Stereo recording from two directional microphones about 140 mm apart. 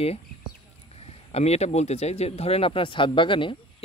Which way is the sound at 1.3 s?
50° left (ahead or behind).